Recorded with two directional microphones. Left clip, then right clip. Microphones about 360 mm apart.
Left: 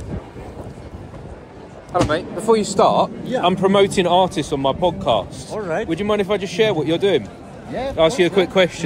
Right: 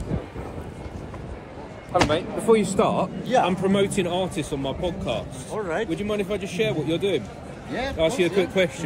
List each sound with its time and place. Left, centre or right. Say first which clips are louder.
2.0 s a man's voice: left 3 dB; centre
5.5 s speech: left 3 dB; left
5.9 s a man's voice: left 7 dB; centre